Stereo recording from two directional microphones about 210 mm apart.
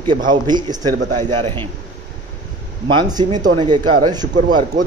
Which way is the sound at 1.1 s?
35° right (ahead or behind).